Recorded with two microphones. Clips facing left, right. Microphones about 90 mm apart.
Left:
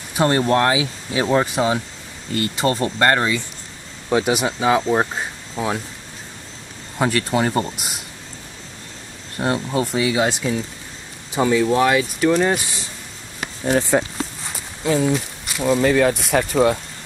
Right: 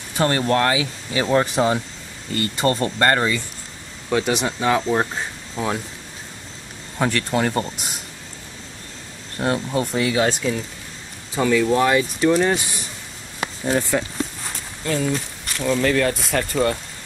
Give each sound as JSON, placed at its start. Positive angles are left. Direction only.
{"t": 0.1, "sound": "speech", "side_deg": 10}
{"t": 7.0, "sound": "speech", "side_deg": 5}
{"t": 9.4, "sound": "speech", "side_deg": 5}
{"t": 13.7, "sound": "speech", "side_deg": 25}
{"t": 14.8, "sound": "a sound", "side_deg": 15}
{"t": 15.6, "sound": "speech", "side_deg": 20}